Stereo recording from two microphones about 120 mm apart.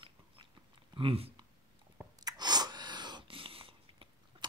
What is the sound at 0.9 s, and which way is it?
Speech, 50° right (ahead or behind).